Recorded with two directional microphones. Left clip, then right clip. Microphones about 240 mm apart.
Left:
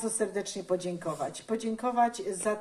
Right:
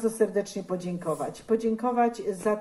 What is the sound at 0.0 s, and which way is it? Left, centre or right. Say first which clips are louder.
Speech: right 6 dB; left.